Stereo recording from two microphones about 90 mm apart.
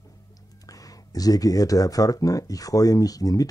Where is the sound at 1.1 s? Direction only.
45° left (ahead or behind).